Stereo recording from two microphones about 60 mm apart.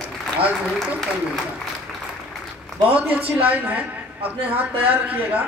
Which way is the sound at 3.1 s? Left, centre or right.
Right.